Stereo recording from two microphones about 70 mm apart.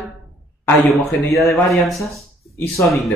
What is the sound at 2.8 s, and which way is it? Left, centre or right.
Speech, left.